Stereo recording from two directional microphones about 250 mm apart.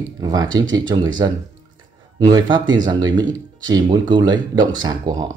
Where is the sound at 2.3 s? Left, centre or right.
Centre.